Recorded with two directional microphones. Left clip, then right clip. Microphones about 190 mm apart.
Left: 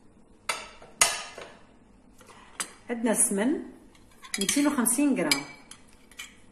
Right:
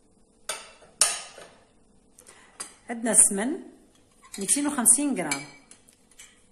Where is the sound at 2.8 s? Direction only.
60° right (ahead or behind).